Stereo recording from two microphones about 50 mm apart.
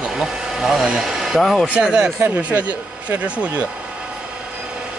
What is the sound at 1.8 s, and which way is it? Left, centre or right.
Speech, centre.